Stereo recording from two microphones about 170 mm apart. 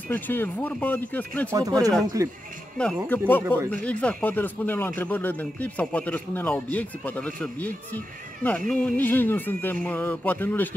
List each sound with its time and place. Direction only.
0.1 s speech: 10° left (ahead or behind)
1.5 s speech: 20° right (ahead or behind)
3.1 s speech: 10° left (ahead or behind)